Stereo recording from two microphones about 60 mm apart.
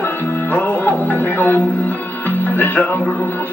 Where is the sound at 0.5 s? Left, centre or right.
Left.